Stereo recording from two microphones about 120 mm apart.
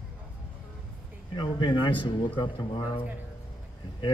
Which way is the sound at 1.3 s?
40° left (ahead or behind).